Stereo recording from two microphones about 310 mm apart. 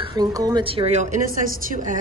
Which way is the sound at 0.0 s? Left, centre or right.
Centre.